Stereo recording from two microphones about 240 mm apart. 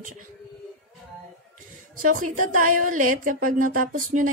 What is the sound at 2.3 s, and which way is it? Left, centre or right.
A woman's voice, right.